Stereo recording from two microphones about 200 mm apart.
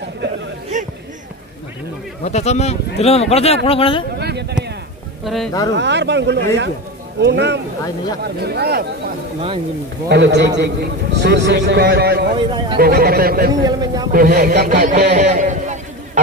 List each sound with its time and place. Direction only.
2.2 s speech: 35° left (ahead or behind)
4.2 s a sound: 55° right (ahead or behind)
5.2 s speech: centre (ahead or behind)
5.8 s a man's voice: 60° right (ahead or behind)
10.0 s a man's voice: 55° right (ahead or behind)
12.4 s a man's voice: 25° right (ahead or behind)
12.7 s a man's voice: 50° right (ahead or behind)
13.6 s a man's voice: 20° right (ahead or behind)
14.1 s a man's voice: 50° right (ahead or behind)